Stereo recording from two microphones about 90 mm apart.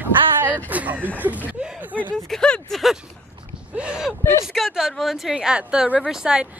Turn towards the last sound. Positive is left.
turn(degrees=-10)  # may be behind; listen again after turning